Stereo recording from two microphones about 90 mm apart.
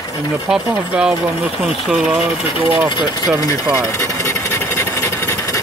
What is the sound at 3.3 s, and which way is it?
Filing, 35° left (ahead or behind).